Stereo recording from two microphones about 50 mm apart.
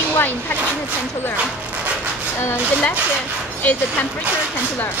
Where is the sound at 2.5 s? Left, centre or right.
Left.